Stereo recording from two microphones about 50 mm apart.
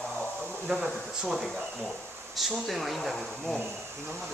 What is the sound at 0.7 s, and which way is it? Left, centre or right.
Speech, centre.